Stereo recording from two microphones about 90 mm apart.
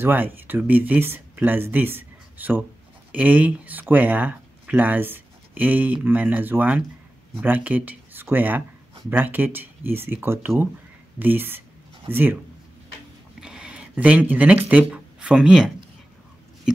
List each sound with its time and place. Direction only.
0.0 s speech: 25° right (ahead or behind)
13.4 s a sound: 10° right (ahead or behind)
14.7 s speech: 15° right (ahead or behind)